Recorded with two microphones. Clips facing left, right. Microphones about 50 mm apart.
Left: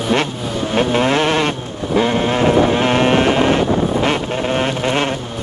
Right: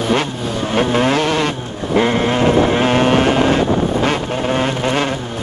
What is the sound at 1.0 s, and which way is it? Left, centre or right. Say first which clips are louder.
Vehicle: even; left.